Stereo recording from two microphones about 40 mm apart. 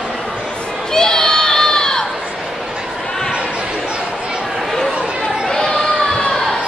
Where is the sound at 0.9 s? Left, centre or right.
Centre.